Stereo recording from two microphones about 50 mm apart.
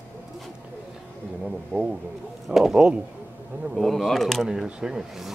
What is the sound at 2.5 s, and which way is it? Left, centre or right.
Speech, centre.